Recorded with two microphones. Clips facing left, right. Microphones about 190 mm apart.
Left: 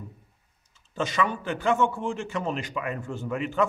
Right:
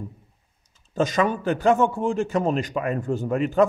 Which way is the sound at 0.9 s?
40° right (ahead or behind).